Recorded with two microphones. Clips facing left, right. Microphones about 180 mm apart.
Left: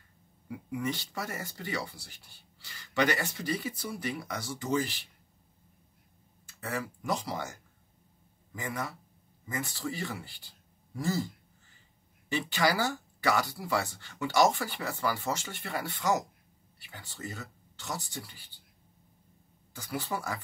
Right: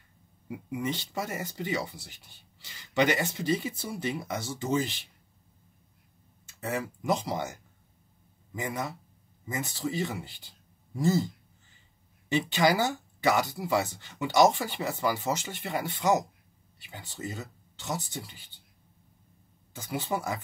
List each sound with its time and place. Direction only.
0.5 s speech: 20° right (ahead or behind)
6.4 s speech: 20° right (ahead or behind)
12.3 s speech: 20° right (ahead or behind)
19.7 s speech: 20° right (ahead or behind)